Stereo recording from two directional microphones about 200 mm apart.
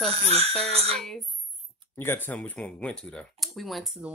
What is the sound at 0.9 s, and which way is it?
Speech, centre (ahead or behind).